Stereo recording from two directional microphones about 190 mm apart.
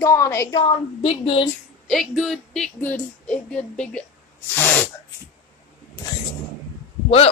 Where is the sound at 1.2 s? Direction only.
30° left (ahead or behind).